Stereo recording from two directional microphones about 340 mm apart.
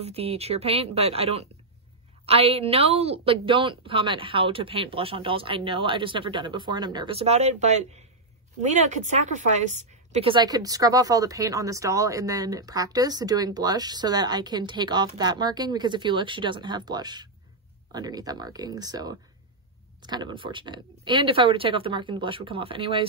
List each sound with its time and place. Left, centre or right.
0.0 s a woman's voice: centre